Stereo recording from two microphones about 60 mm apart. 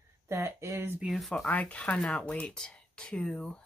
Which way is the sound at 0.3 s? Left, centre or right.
Right.